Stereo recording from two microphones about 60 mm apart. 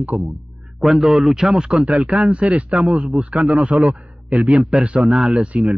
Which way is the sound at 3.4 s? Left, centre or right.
Centre.